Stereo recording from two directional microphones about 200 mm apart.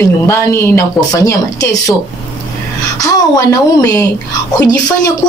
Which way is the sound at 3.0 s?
20° left (ahead or behind).